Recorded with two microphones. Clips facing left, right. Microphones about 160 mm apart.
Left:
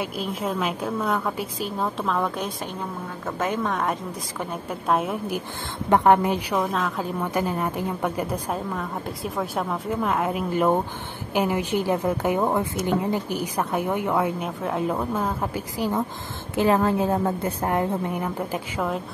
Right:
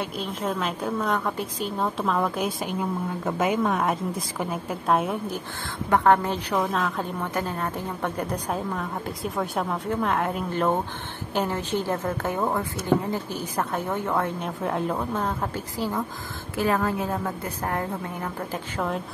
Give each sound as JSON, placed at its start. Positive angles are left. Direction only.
{"t": 0.0, "sound": "a woman's voice", "side_deg": 5}
{"t": 5.9, "sound": "a woman's voice", "side_deg": 20}
{"t": 6.6, "sound": "a woman's voice", "side_deg": 0}
{"t": 7.2, "sound": "a woman's voice", "side_deg": 10}
{"t": 16.5, "sound": "a woman's voice", "side_deg": 25}